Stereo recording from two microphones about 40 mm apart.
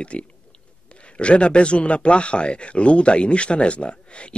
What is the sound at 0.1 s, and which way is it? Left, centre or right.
Speech, left.